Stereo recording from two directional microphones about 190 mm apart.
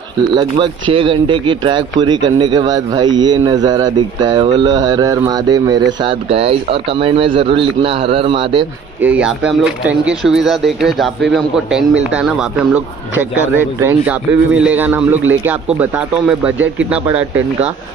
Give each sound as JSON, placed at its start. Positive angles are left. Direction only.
{"t": 0.3, "sound": "speech", "side_deg": -25}
{"t": 9.0, "sound": "speech", "side_deg": -5}